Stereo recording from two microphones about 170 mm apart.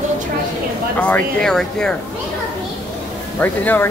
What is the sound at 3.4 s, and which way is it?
Speech, 10° left (ahead or behind).